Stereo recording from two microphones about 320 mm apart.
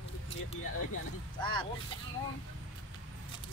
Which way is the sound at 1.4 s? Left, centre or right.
Centre.